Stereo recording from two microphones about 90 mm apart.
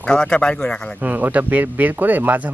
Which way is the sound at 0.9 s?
20° right (ahead or behind).